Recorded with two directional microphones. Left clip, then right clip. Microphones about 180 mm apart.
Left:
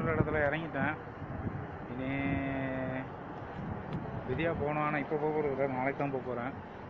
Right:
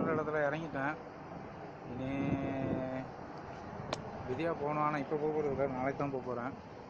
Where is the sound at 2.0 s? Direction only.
15° right (ahead or behind).